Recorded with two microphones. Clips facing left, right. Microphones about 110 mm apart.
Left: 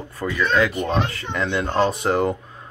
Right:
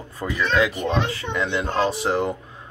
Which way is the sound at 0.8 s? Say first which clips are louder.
Even; centre (ahead or behind).